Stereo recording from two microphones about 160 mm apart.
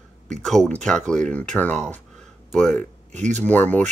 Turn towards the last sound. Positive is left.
turn(degrees=10)  # may be behind; listen again after turning